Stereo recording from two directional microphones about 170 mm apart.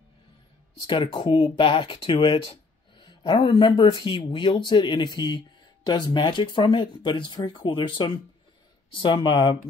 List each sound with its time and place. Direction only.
0.8 s speech: 30° left (ahead or behind)